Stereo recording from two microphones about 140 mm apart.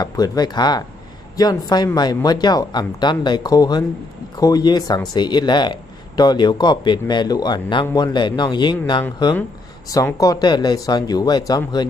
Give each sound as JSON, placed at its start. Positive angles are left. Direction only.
{"t": 0.0, "sound": "speech", "side_deg": 25}
{"t": 10.1, "sound": "speech", "side_deg": 25}